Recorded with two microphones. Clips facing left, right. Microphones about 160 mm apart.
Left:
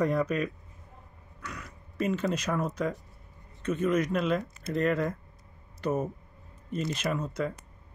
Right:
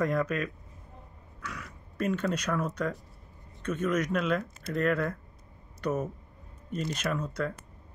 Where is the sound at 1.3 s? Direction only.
Centre (ahead or behind).